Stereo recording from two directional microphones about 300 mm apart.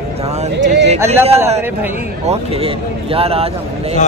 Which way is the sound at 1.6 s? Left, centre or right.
Centre.